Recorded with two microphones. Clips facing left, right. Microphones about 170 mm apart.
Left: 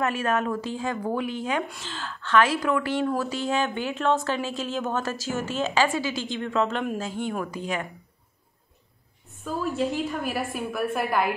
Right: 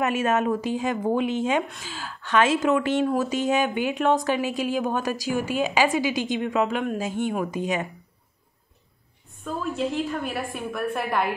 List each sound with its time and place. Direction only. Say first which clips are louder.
0.0 s speech: right 3 dB; 20° right (ahead or behind)
1.7 s speech: left 1 dB; 10° right (ahead or behind)
9.4 s a woman's voice: left 1 dB; centre (ahead or behind)